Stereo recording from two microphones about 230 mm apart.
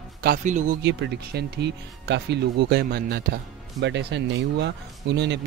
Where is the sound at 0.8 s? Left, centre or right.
Right.